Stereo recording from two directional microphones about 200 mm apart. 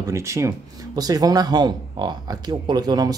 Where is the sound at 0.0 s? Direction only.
15° right (ahead or behind).